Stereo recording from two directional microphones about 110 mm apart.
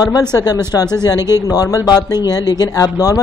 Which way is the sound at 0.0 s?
35° left (ahead or behind).